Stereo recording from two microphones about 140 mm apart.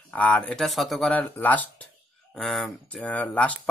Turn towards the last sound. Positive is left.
turn(degrees=10)  # may be behind; listen again after turning